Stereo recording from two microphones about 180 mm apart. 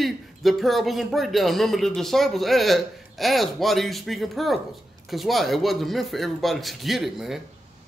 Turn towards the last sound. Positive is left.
turn(degrees=0)  # may be behind; listen again after turning